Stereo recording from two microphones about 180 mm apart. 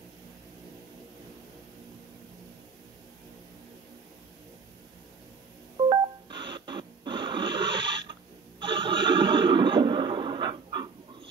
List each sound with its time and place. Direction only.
5.9 s telephone dialing: 25° right (ahead or behind)
8.5 s neigh: 25° right (ahead or behind)